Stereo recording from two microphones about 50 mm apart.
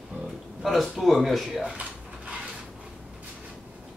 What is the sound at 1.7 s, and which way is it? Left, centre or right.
Dishes, right.